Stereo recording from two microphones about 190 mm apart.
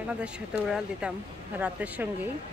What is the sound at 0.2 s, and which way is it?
Speech, 5° right (ahead or behind).